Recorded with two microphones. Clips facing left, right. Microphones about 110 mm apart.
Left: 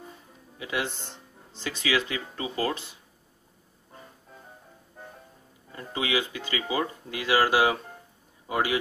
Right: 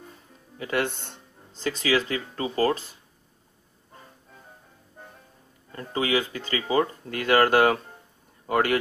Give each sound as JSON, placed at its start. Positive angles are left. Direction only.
{"t": 0.6, "sound": "speech", "side_deg": -55}
{"t": 1.6, "sound": "speech", "side_deg": -35}
{"t": 5.7, "sound": "speech", "side_deg": -40}
{"t": 8.5, "sound": "speech", "side_deg": -60}